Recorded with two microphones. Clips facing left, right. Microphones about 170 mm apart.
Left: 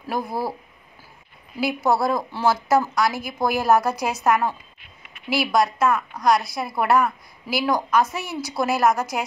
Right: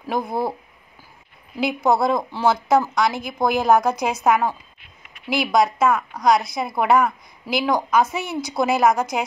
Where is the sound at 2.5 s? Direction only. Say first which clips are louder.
Right 1 dB; centre (ahead or behind).